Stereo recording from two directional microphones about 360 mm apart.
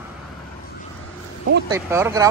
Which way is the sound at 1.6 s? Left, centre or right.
Centre.